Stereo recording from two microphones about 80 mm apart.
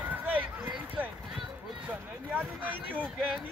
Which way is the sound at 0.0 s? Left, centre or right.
Right.